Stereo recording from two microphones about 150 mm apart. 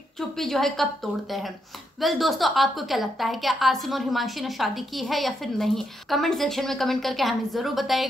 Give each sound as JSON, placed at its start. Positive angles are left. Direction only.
{"t": 0.4, "sound": "a woman's voice", "side_deg": 0}
{"t": 1.1, "sound": "speech", "side_deg": -10}
{"t": 2.0, "sound": "a woman's voice", "side_deg": 0}